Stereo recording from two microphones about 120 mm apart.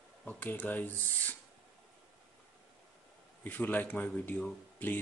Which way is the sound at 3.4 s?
15° left (ahead or behind).